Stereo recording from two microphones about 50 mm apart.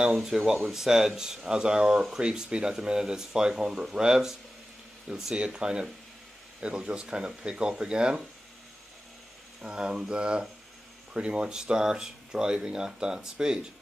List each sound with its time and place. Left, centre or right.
0.0 s speech: centre
9.6 s speech: centre